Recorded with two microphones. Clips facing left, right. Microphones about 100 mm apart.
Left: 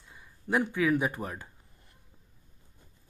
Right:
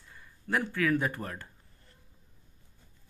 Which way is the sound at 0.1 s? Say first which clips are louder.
Left 2 dB; 15° left (ahead or behind).